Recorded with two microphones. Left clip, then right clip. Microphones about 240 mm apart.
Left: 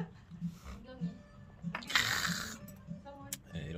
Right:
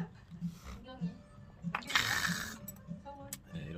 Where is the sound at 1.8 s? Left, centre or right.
Centre.